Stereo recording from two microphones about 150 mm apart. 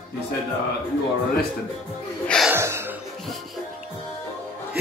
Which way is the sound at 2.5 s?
15° right (ahead or behind).